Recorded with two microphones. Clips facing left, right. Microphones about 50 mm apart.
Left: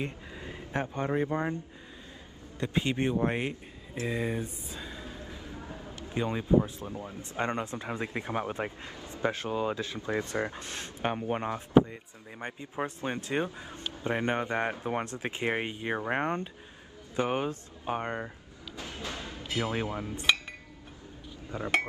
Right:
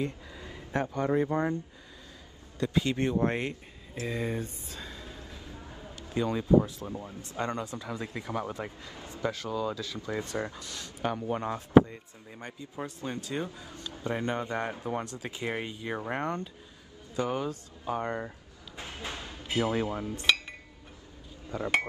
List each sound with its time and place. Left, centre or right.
0.0 s a sound: left
1.2 s speech: left
2.6 s speech: left
3.9 s speech: left
4.2 s speech: centre
5.9 s speech: left
18.8 s a sound: right
19.6 s speech: left
21.5 s speech: left